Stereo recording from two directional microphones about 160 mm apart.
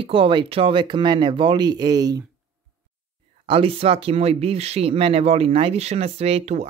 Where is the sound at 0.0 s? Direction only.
35° right (ahead or behind).